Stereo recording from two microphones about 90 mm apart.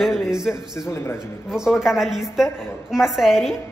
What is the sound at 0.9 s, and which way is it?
Speech, 30° left (ahead or behind).